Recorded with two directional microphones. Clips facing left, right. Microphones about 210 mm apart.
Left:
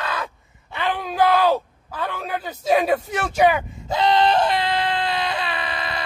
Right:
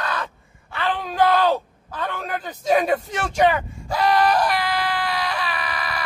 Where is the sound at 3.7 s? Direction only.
20° left (ahead or behind).